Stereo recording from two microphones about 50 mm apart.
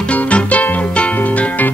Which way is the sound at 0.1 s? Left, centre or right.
Left.